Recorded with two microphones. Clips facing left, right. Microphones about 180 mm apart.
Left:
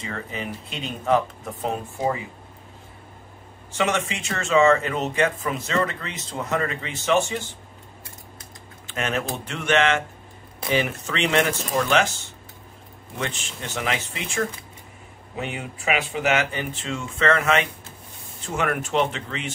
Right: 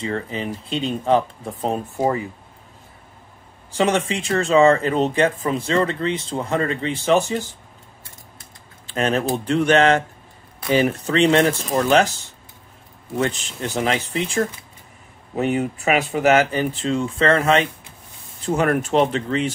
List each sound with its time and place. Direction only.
0.0 s speech: 30° right (ahead or behind)
3.7 s speech: 35° right (ahead or behind)
8.8 s speech: 35° right (ahead or behind)
13.2 s speech: 35° right (ahead or behind)